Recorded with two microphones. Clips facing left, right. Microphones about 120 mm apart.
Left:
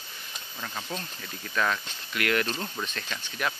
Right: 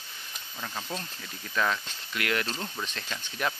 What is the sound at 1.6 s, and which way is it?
Speech, 20° right (ahead or behind).